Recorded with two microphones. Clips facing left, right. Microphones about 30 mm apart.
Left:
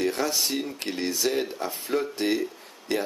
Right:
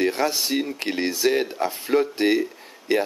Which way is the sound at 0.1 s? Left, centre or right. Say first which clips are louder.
Right 4 dB; right.